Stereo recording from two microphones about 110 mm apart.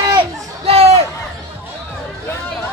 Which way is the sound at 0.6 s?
65° right (ahead or behind).